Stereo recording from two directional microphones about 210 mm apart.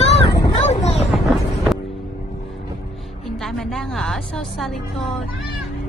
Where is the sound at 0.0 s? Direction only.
20° left (ahead or behind).